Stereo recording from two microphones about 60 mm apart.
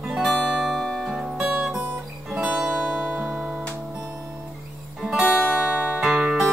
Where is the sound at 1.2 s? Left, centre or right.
Centre.